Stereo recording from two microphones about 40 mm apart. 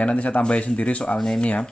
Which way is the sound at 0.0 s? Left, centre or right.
Left.